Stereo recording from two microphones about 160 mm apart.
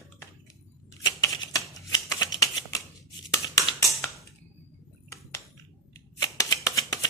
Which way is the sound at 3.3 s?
25° left (ahead or behind).